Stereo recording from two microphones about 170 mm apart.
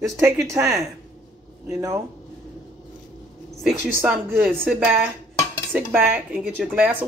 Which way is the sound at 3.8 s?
10° right (ahead or behind).